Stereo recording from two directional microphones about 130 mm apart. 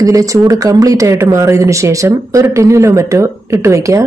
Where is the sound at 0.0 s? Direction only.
25° right (ahead or behind).